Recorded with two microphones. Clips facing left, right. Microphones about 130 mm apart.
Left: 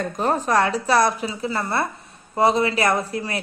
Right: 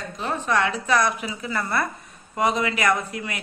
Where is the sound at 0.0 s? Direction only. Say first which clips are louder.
Left 6 dB; 45° left (ahead or behind).